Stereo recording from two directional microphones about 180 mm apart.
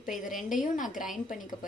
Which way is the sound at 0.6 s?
45° left (ahead or behind).